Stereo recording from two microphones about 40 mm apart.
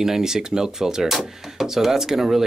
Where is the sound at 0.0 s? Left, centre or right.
Centre.